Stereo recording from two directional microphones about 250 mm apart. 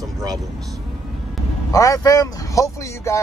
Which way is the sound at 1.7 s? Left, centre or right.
Centre.